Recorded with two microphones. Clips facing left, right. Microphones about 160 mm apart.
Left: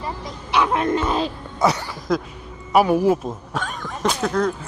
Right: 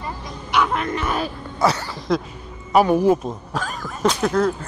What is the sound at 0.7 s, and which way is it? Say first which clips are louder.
Speech: left 3 dB; 25° left (ahead or behind).